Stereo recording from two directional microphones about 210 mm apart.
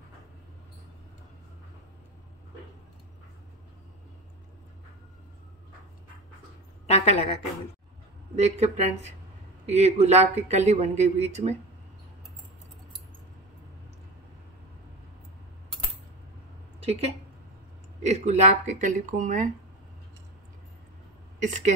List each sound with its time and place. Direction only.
6.9 s a woman's voice: 30° left (ahead or behind)
8.4 s speech: 30° right (ahead or behind)
16.8 s a woman's voice: 30° right (ahead or behind)
21.4 s speech: 35° right (ahead or behind)